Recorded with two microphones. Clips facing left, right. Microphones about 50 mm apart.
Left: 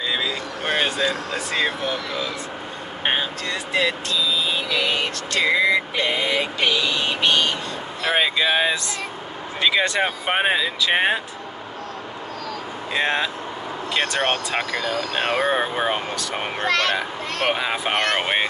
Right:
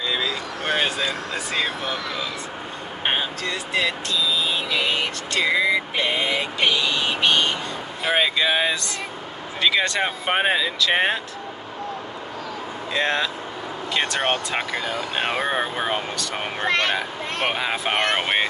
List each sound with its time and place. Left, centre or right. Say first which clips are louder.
0.1 s speech: even; centre
3.4 s speech: left 2 dB; centre
4.5 s vehicle: left 1 dB; centre
6.6 s speech: right 2 dB; centre
12.9 s speech: left 1 dB; centre
14.2 s speech: left 1 dB; centre
16.6 s speech: left 1 dB; right
17.5 s speech: left 2 dB; centre
17.9 s speech: even; centre